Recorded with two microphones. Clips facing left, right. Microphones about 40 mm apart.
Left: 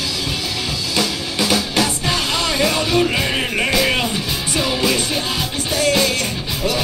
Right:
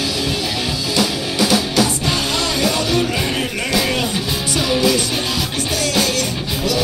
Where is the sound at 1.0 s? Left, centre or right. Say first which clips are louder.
Right 2 dB; centre.